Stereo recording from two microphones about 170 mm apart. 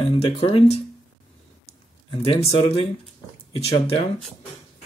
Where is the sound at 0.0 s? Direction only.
35° left (ahead or behind).